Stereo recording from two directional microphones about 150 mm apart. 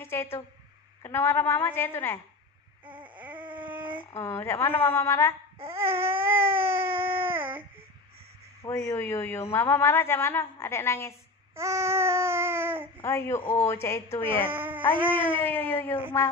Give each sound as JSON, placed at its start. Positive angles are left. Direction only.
{"t": 0.0, "sound": "a woman's voice", "side_deg": 15}
{"t": 3.0, "sound": "baby cry", "side_deg": -10}
{"t": 4.2, "sound": "a woman's voice", "side_deg": 15}
{"t": 5.8, "sound": "baby cry", "side_deg": -15}
{"t": 8.6, "sound": "a woman's voice", "side_deg": 20}
{"t": 11.5, "sound": "baby cry", "side_deg": -20}
{"t": 13.0, "sound": "a woman's voice", "side_deg": 20}
{"t": 14.4, "sound": "speech", "side_deg": -15}
{"t": 15.3, "sound": "a woman's voice", "side_deg": 10}